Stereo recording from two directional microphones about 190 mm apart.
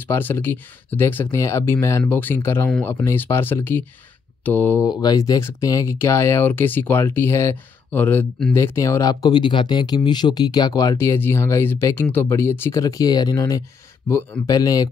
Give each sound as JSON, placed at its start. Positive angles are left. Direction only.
{"t": 0.0, "sound": "speech", "side_deg": 10}